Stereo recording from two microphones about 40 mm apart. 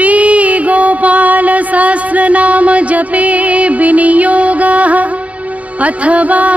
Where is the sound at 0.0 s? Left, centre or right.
Right.